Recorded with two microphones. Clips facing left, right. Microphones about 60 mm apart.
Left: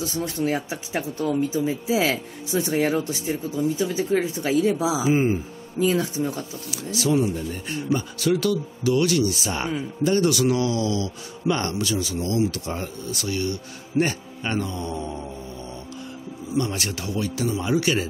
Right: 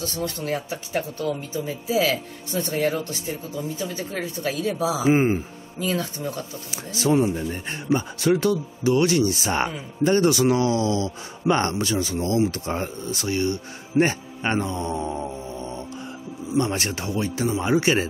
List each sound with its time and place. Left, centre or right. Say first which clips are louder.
0.0 s speech: left 3 dB; centre
5.0 s speech: right 3 dB; right
5.9 s speech: left 3 dB; centre
6.7 s speech: right 1 dB; right
16.5 s speech: right 2 dB; right